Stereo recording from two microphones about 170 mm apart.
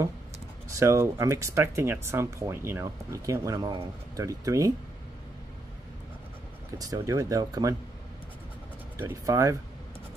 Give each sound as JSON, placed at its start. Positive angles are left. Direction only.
{"t": 0.7, "sound": "speech", "side_deg": -15}
{"t": 6.8, "sound": "speech", "side_deg": -20}
{"t": 8.9, "sound": "speech", "side_deg": -15}